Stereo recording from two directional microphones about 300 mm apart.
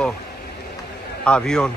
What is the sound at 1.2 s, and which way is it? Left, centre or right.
Speech, centre.